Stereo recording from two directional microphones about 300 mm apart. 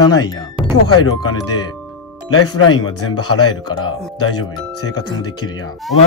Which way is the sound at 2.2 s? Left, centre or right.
Left.